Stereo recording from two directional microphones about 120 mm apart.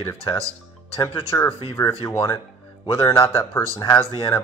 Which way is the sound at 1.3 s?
35° left (ahead or behind).